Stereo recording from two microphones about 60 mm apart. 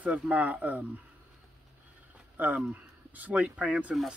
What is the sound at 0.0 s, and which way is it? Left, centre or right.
Speech, right.